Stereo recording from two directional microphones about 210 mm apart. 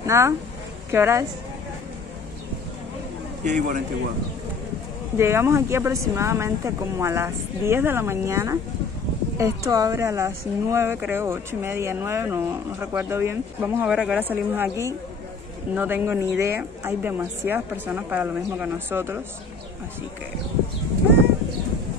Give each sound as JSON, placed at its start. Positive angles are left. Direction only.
{"t": 0.0, "sound": "a woman's voice", "side_deg": -15}
{"t": 3.4, "sound": "a man's voice", "side_deg": -35}
{"t": 5.1, "sound": "speech", "side_deg": -10}